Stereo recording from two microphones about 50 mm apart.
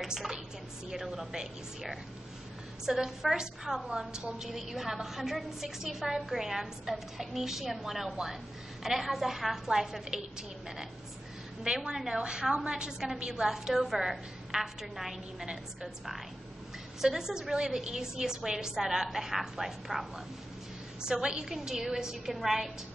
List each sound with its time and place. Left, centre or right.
0.0 s a woman's voice: centre
4.1 s a woman's voice: centre
4.5 s a woman's voice: centre
11.6 s a woman's voice: centre
21.0 s a woman's voice: centre